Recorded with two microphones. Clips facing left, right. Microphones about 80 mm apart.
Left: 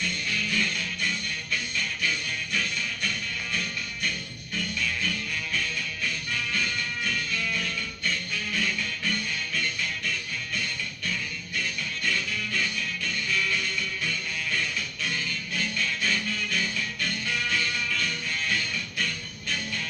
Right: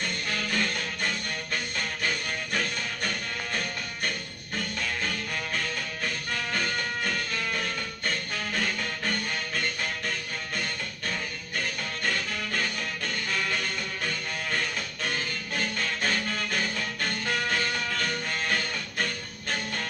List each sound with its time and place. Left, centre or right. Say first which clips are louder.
0.0 s music: even; right